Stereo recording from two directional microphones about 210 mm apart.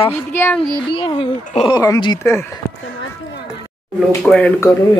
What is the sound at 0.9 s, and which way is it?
Speech, 25° left (ahead or behind).